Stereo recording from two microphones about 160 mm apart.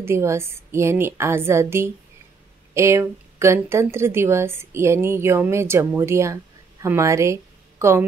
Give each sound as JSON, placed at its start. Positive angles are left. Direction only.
{"t": 0.0, "sound": "speech", "side_deg": -15}